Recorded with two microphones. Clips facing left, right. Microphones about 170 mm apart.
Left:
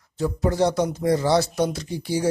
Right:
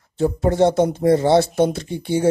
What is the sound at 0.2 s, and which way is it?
Speech, 25° right (ahead or behind).